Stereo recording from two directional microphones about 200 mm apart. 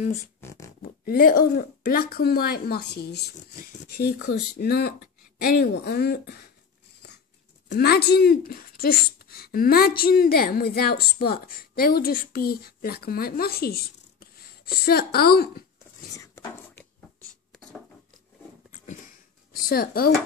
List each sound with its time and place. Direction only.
0.4 s music: 15° left (ahead or behind)
0.8 s speech: 45° left (ahead or behind)
7.6 s speech: 55° left (ahead or behind)
16.2 s a sound: 15° left (ahead or behind)
17.5 s a sound: 5° left (ahead or behind)
19.7 s speech: 50° left (ahead or behind)